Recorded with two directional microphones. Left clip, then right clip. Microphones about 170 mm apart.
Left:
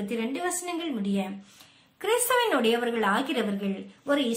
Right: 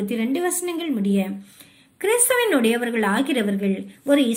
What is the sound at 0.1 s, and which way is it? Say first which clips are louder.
A woman's voice: right 5 dB; 25° right (ahead or behind).